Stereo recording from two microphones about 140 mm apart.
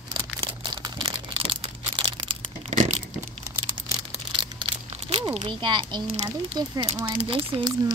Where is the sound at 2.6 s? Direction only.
60° right (ahead or behind).